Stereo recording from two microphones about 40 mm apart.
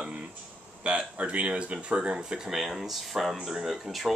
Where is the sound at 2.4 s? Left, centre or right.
Centre.